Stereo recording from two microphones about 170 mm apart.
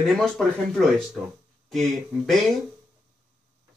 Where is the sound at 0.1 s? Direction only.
Centre (ahead or behind).